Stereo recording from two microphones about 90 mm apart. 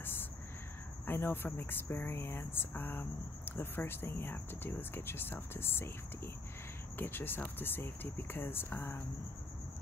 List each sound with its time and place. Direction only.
1.0 s speech: 25° left (ahead or behind)